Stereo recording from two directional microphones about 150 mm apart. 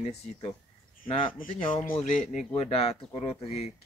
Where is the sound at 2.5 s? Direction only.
45° left (ahead or behind).